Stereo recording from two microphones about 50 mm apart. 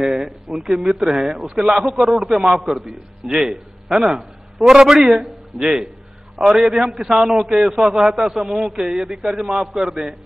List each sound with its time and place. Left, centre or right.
0.0 s a man's voice: centre
4.2 s a sound: centre
4.7 s a man's voice: centre